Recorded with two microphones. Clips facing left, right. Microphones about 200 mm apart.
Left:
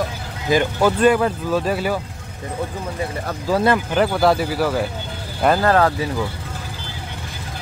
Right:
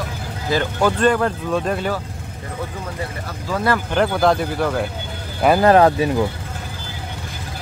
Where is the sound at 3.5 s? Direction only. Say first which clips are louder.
Left 5 dB; 35° left (ahead or behind).